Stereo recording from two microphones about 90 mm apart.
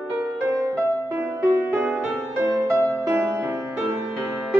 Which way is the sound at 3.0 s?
30° right (ahead or behind).